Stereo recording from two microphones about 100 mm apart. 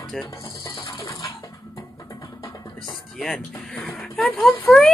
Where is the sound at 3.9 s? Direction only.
15° left (ahead or behind).